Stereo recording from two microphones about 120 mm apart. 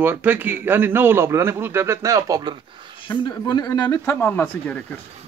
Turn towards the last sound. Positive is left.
turn(degrees=15)  # may be behind; listen again after turning